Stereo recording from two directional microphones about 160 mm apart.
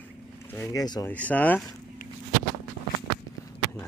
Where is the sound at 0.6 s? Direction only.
25° left (ahead or behind).